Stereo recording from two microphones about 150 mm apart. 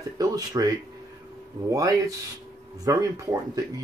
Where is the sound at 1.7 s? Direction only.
20° right (ahead or behind).